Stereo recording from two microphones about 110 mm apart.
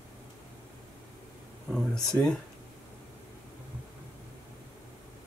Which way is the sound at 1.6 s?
5° left (ahead or behind).